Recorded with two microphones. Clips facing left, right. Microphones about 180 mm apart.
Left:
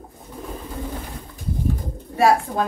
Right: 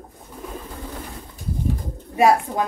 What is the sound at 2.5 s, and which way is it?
Speech, 10° right (ahead or behind).